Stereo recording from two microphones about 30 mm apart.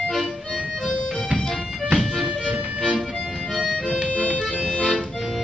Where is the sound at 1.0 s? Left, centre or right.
Centre.